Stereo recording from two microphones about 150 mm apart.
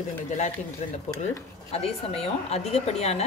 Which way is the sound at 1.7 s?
40° left (ahead or behind).